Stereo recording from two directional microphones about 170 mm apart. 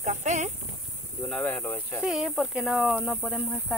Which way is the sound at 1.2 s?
5° left (ahead or behind).